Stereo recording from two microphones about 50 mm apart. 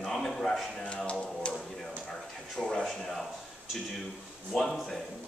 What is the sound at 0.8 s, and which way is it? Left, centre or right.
Music, left.